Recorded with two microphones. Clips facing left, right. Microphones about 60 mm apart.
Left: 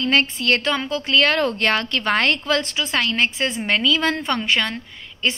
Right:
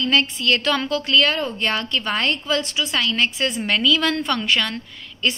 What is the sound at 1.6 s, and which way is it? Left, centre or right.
Speech, left.